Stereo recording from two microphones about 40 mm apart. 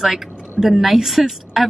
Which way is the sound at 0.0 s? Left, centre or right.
Centre.